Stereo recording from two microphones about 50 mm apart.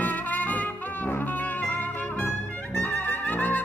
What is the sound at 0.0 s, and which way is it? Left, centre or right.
Music, left.